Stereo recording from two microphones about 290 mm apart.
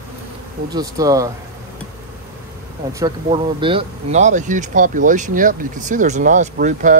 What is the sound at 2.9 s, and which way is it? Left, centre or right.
Speech, centre.